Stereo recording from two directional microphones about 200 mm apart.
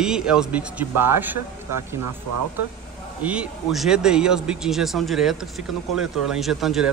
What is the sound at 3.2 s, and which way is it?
Speech, 5° right (ahead or behind).